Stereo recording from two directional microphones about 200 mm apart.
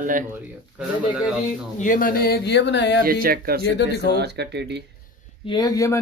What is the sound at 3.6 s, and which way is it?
Speech, 55° left (ahead or behind).